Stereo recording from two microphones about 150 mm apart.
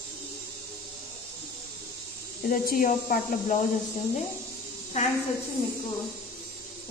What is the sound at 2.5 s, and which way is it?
Speech, 65° left (ahead or behind).